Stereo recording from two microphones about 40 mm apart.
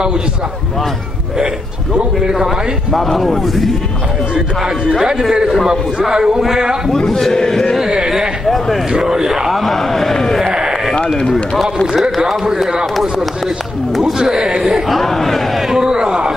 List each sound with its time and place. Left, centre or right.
2.3 s a man's voice: centre
3.0 s speech: centre
5.7 s a man's voice: centre
7.1 s speech: centre
7.8 s a man's voice: centre
9.5 s speech: centre
10.4 s sheep: centre
11.1 s speech: centre
11.5 s speech: centre
12.0 s a man's voice: centre
14.1 s a man's voice: centre
15.0 s speech: centre
15.7 s speech: centre